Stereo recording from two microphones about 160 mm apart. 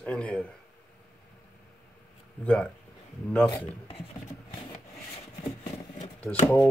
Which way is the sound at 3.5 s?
35° left (ahead or behind).